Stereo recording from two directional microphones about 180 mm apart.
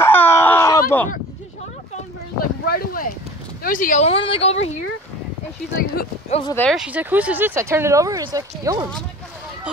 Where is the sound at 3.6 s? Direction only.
50° left (ahead or behind).